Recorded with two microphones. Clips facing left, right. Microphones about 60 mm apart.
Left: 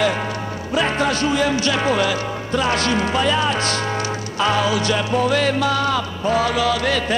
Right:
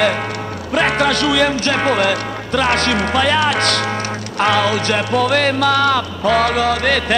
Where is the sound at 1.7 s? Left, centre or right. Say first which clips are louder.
Right 3 dB; right.